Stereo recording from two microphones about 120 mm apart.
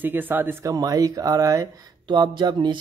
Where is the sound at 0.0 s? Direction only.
15° right (ahead or behind).